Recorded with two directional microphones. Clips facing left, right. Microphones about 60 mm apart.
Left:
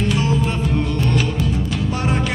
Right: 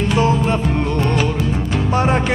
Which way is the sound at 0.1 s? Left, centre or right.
Right.